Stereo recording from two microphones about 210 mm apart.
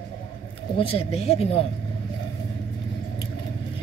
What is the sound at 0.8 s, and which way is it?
Speech, 25° left (ahead or behind).